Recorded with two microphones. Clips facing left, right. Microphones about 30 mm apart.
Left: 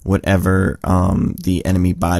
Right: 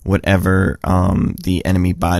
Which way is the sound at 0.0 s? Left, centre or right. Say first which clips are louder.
Right 1 dB; right.